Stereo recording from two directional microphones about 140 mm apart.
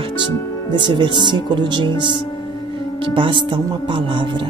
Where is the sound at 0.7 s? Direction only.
35° right (ahead or behind).